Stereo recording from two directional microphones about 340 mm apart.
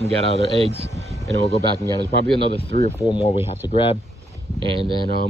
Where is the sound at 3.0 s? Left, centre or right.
Centre.